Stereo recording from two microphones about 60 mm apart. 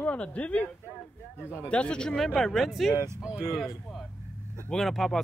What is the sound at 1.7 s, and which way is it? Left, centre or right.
Speech, centre.